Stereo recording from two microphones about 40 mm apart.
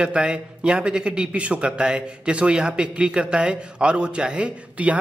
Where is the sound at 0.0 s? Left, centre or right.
Right.